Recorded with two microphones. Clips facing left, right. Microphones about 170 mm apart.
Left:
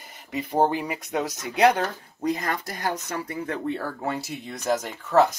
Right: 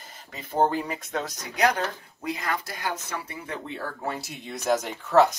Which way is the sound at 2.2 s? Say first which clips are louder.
Left 4 dB; 40° left (ahead or behind).